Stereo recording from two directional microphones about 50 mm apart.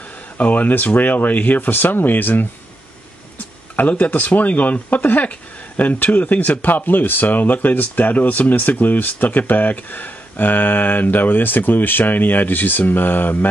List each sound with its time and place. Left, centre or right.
0.4 s speech: left
3.7 s speech: left